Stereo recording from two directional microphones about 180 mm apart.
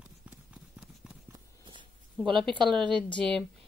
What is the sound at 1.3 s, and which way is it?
Walk, 25° right (ahead or behind).